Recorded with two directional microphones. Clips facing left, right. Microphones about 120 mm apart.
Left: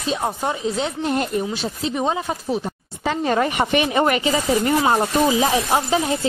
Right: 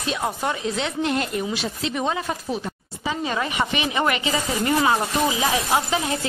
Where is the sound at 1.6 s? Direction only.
25° left (ahead or behind).